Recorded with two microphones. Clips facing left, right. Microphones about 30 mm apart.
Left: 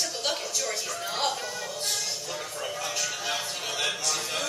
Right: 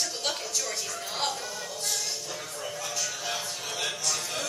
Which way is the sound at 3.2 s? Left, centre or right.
Centre.